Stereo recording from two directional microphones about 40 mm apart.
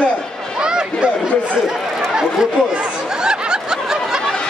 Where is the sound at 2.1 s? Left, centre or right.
Right.